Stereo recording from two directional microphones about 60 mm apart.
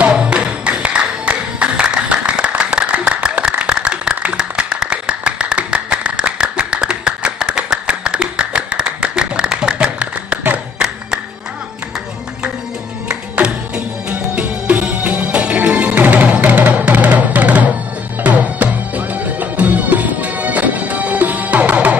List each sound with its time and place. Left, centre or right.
0.0 s music: centre
9.8 s a sound: right
13.1 s music: centre